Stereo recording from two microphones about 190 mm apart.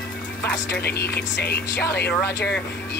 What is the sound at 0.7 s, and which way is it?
Speech, 55° left (ahead or behind).